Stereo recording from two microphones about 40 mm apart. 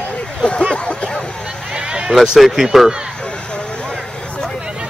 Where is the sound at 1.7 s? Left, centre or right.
Right.